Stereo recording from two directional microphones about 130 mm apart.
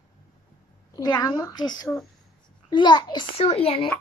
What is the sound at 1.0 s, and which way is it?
A child's voice, 30° left (ahead or behind).